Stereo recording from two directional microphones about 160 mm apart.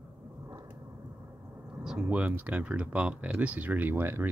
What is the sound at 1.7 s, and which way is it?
Speech, 5° right (ahead or behind).